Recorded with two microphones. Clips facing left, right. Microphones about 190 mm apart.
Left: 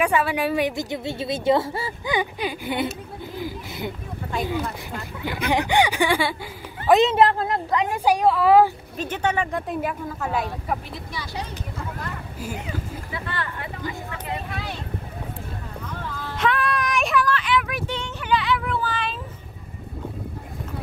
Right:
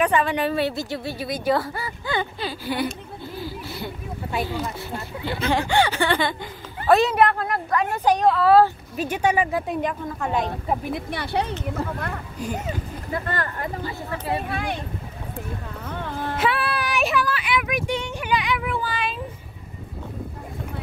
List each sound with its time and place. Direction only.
0.0 s a woman's voice: 10° left (ahead or behind)
3.3 s a sound: 15° left (ahead or behind)
5.2 s a woman's voice: 15° left (ahead or behind)
6.9 s a woman's voice: 20° left (ahead or behind)
8.9 s speech: 10° right (ahead or behind)
10.9 s speech: 60° right (ahead or behind)
12.5 s speech: 45° right (ahead or behind)
15.9 s a sound: 60° right (ahead or behind)
16.3 s child singing: 5° right (ahead or behind)